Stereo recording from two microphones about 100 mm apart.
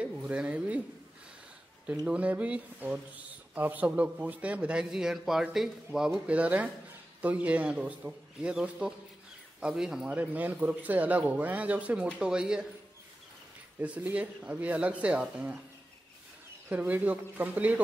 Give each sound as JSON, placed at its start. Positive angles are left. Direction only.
{"t": 0.0, "sound": "speech", "side_deg": -10}
{"t": 2.0, "sound": "speech", "side_deg": -15}
{"t": 13.7, "sound": "speech", "side_deg": -15}
{"t": 16.6, "sound": "speech", "side_deg": -15}